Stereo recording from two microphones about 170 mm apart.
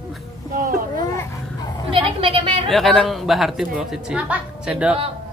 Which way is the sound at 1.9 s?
30° right (ahead or behind).